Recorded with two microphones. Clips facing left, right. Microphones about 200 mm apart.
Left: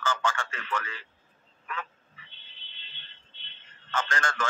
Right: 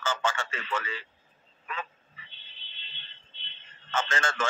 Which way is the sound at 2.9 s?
20° right (ahead or behind).